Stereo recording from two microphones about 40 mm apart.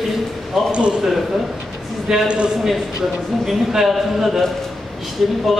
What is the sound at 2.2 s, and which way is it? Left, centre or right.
Speech, right.